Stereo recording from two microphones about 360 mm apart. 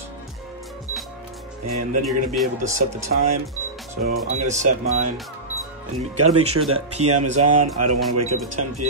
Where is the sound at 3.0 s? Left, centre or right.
Right.